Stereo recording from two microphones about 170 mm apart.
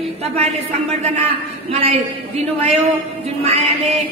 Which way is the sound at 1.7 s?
35° right (ahead or behind).